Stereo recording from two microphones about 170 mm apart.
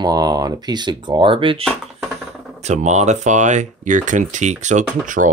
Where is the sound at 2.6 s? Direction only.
45° right (ahead or behind).